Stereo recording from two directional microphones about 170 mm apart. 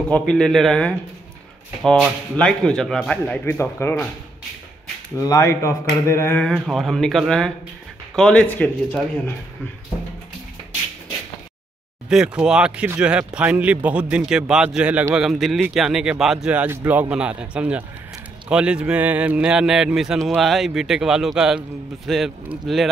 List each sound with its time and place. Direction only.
0.1 s a man's voice: 5° left (ahead or behind)
5.1 s a man's voice: 20° left (ahead or behind)
12.1 s a man's voice: 5° right (ahead or behind)